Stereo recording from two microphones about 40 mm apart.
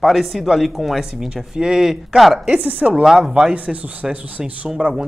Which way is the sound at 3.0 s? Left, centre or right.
Centre.